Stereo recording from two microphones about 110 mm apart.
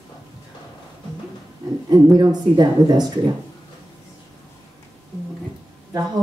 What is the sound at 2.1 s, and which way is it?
A woman's voice, 35° right (ahead or behind).